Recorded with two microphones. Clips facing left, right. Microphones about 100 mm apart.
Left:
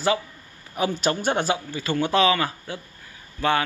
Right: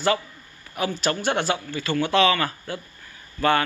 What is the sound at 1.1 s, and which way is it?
Speech, 25° left (ahead or behind).